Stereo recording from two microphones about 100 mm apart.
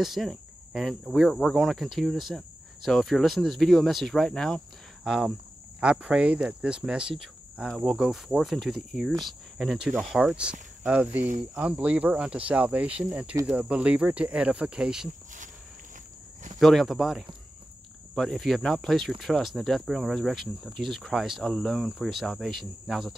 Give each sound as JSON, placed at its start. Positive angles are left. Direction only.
{"t": 0.0, "sound": "speech", "side_deg": 0}
{"t": 5.0, "sound": "speech", "side_deg": -5}
{"t": 16.5, "sound": "speech", "side_deg": 0}